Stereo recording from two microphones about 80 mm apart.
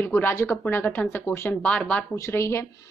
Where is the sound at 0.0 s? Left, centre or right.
Left.